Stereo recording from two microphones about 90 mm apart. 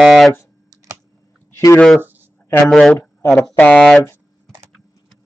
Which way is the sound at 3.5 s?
15° left (ahead or behind).